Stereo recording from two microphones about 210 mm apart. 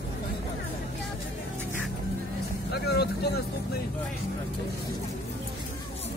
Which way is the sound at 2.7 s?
50° left (ahead or behind).